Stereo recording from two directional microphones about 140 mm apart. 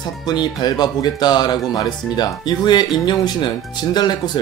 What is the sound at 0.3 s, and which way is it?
Speech, 30° left (ahead or behind).